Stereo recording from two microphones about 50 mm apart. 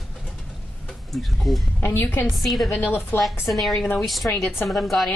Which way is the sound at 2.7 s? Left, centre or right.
Left.